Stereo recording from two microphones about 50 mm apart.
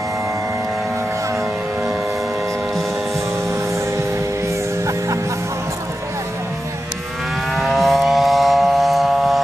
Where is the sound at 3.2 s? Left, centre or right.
Right.